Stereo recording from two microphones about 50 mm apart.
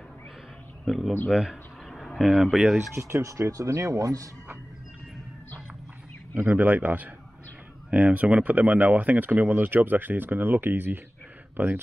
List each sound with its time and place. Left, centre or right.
0.8 s speech: centre
2.1 s speech: centre
3.0 s speech: right
6.3 s speech: right
7.9 s speech: right